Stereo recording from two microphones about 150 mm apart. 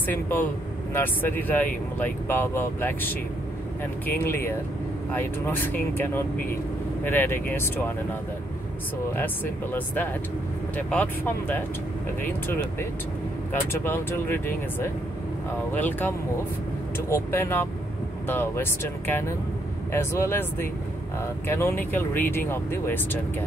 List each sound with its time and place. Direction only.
0.0 s speech: 10° left (ahead or behind)
9.1 s speech: 15° left (ahead or behind)